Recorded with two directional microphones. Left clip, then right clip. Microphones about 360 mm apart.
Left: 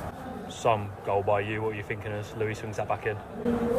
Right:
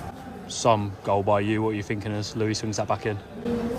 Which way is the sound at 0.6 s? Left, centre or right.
Right.